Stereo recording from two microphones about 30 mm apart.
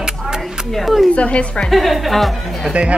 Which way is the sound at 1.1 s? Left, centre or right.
Left.